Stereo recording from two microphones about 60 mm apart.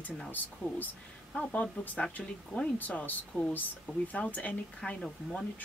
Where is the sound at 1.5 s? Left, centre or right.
Left.